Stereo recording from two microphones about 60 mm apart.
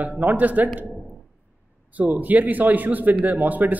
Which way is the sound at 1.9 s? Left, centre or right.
Right.